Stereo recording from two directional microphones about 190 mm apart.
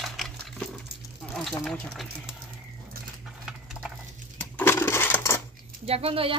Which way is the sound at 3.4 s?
Centre (ahead or behind).